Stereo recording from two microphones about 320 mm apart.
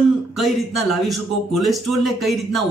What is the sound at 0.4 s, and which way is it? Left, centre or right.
Speech, centre.